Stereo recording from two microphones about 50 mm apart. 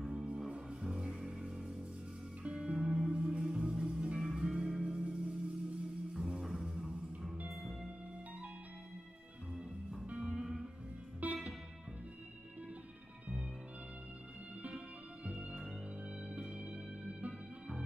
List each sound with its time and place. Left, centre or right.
0.0 s music: centre
10.2 s music: centre
11.2 s music: right
15.3 s music: centre